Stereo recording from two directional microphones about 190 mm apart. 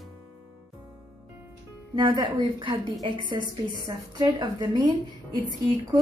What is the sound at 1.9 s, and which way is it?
Speech, 25° right (ahead or behind).